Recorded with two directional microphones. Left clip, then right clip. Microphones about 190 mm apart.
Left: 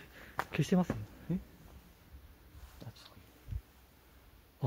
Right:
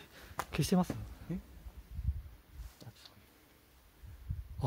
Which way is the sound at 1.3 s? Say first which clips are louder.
Left 4 dB; 45° left (ahead or behind).